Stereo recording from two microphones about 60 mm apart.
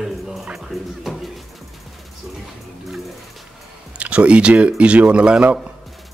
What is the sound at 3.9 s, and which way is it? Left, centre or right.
Speech, right.